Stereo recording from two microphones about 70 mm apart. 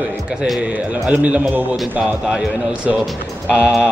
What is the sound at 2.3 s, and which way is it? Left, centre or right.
Speech, centre.